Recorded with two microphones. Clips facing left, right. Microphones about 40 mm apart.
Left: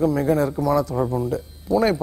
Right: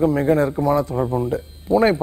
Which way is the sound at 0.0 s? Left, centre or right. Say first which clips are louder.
Right 2 dB; right.